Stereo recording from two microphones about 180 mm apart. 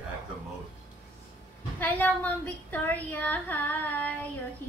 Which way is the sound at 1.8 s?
10° left (ahead or behind).